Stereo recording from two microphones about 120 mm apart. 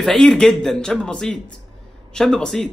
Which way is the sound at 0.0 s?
5° left (ahead or behind).